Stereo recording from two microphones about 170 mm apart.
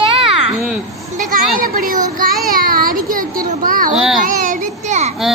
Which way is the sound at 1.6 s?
55° right (ahead or behind).